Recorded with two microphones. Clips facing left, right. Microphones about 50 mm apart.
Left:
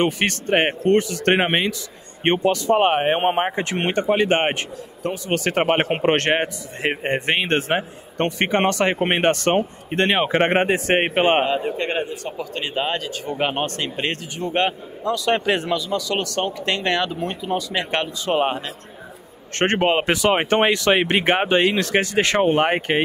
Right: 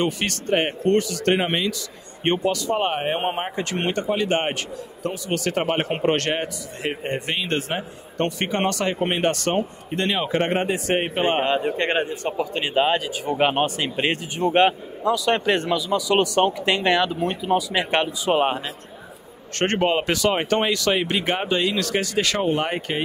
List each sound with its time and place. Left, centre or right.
0.0 s a man's voice: left
11.4 s a man's voice: right
12.4 s a man's voice: centre
19.5 s a man's voice: left